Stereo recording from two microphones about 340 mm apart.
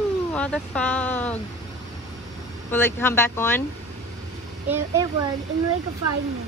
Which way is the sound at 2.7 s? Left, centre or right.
Centre.